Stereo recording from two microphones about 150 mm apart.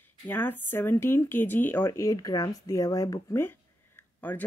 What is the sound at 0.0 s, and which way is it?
A woman's voice, 10° left (ahead or behind).